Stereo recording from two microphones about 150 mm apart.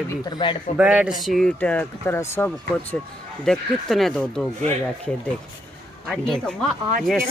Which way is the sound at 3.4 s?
Centre (ahead or behind).